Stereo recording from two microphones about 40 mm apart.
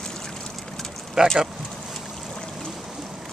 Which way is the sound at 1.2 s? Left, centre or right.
Centre.